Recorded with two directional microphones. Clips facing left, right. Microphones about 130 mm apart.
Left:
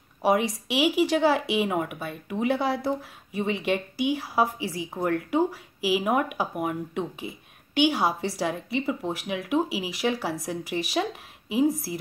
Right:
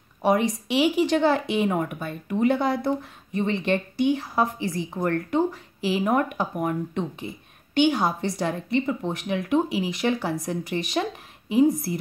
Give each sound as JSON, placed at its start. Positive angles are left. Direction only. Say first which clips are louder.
{"t": 0.2, "sound": "speech", "louder": "right 1 dB", "side_deg": 5}